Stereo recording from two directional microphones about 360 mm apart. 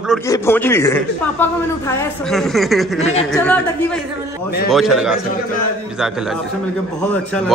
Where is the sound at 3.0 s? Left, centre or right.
Centre.